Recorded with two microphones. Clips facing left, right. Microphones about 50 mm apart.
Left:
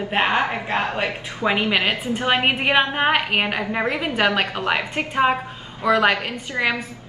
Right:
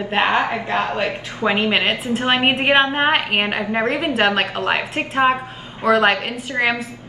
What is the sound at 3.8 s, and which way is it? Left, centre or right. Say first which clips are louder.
Speech: right 3 dB; right.